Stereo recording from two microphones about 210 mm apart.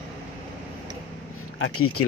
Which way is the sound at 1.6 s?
90° left.